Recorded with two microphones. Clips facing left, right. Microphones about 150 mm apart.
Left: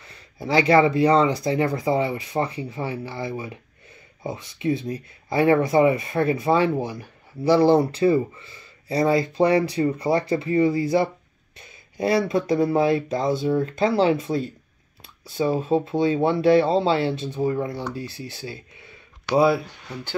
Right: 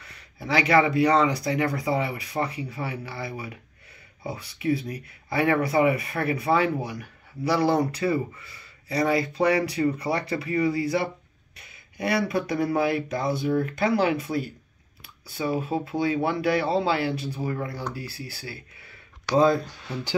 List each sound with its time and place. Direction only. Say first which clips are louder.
0.0 s speech: left 5 dB; 30° left (ahead or behind)
4.3 s speech: left 3 dB; 30° right (ahead or behind)
4.6 s speech: left 1 dB; 25° left (ahead or behind)
19.3 s speech: left 2 dB; 10° left (ahead or behind)